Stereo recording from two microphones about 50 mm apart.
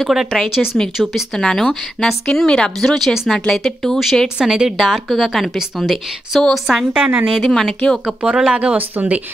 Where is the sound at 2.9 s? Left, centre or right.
Centre.